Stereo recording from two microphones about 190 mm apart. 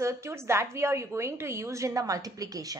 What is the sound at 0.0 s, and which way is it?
A woman's voice, 15° right (ahead or behind).